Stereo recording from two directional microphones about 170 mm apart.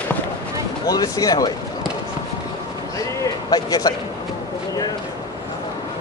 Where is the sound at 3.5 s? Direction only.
20° left (ahead or behind).